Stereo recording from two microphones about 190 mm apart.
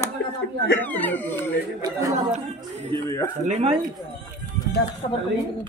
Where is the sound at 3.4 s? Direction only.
35° right (ahead or behind).